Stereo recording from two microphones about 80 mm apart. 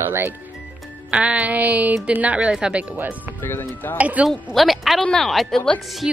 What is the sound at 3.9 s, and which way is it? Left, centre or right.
Speech, centre.